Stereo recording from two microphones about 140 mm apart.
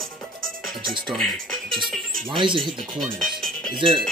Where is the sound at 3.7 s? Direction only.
35° right (ahead or behind).